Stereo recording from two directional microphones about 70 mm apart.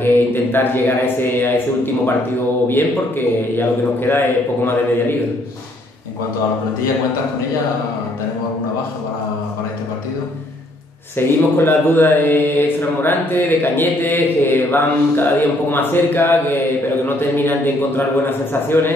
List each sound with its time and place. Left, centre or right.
0.0 s speech: left
2.7 s speech: left
11.1 s speech: left